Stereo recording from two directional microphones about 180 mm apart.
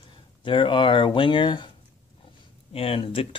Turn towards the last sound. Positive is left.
turn(degrees=30)  # may be behind; listen again after turning